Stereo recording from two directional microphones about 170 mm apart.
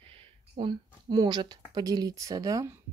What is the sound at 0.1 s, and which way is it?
Speech, 35° right (ahead or behind).